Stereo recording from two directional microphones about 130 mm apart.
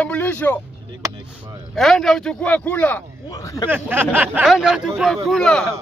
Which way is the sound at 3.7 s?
15° right (ahead or behind).